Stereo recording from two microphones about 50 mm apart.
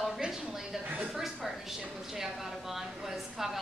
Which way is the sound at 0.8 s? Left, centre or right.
Right.